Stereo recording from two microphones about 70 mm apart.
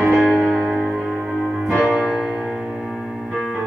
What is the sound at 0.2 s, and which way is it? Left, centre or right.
Music, centre.